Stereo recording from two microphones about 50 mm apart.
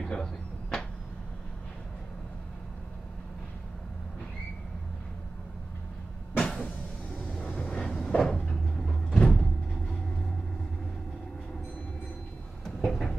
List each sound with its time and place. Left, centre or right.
0.0 s a sound: centre
6.3 s vehicle: left
8.8 s sliding door: centre
12.6 s vehicle: centre